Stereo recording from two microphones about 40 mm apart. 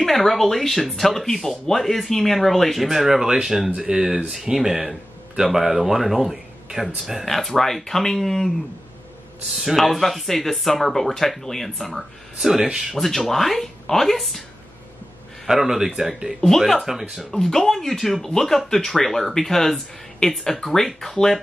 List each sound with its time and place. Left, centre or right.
0.0 s a man's voice: centre
7.2 s speech: centre
9.5 s speech: centre
12.4 s a man's voice: centre
12.9 s speech: centre
15.4 s a man's voice: centre
16.3 s speech: centre
17.2 s speech: centre